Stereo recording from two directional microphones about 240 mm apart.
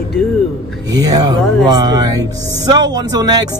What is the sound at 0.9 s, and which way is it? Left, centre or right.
Speech, centre.